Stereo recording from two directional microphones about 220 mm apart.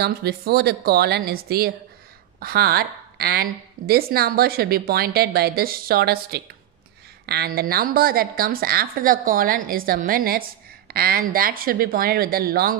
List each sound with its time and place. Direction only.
0.0 s a woman's voice: 45° right (ahead or behind)